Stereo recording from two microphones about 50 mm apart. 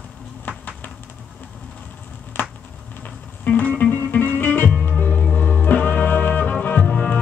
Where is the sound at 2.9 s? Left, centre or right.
Left.